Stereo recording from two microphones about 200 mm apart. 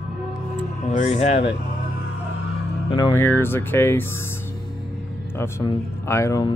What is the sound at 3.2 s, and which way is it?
Speech, 10° left (ahead or behind).